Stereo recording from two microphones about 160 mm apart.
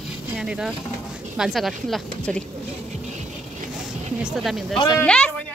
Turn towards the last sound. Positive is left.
turn(degrees=5)  # may be behind; listen again after turning